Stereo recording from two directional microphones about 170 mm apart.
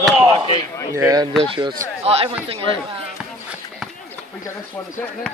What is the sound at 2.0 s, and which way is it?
Speech, 35° right (ahead or behind).